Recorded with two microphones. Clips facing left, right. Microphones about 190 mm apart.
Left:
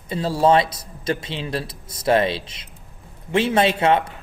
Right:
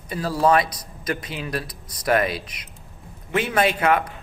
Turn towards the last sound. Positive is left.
turn(degrees=25)  # may be behind; listen again after turning